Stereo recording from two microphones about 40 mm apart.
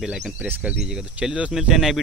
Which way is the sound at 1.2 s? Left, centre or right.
Centre.